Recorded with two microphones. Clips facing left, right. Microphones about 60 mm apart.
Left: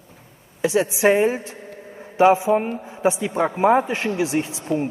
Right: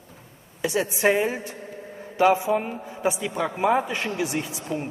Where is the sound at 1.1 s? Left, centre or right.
Left.